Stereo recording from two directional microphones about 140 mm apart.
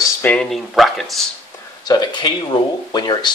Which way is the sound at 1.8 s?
30° left (ahead or behind).